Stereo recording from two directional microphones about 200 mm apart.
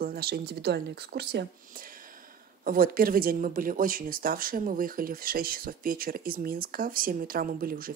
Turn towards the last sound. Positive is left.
turn(degrees=-45)  # may be behind; listen again after turning